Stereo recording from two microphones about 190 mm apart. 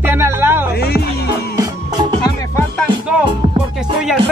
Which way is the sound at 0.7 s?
55° left (ahead or behind).